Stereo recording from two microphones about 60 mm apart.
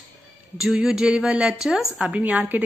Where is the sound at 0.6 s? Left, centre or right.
Centre.